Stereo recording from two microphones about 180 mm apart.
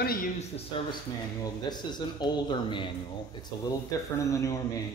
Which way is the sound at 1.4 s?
20° left (ahead or behind).